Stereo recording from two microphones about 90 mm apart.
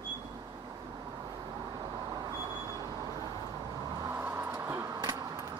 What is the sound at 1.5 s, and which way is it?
Vehicle, 50° right (ahead or behind).